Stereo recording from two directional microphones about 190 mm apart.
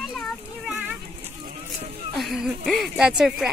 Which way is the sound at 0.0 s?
Centre (ahead or behind).